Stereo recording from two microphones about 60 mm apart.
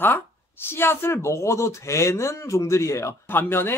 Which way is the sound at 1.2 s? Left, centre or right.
Left.